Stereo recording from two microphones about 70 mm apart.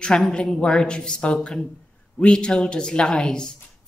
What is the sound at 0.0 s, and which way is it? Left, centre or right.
A woman's voice, centre.